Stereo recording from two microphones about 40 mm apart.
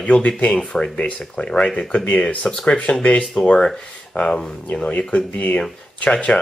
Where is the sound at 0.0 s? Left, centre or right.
Left.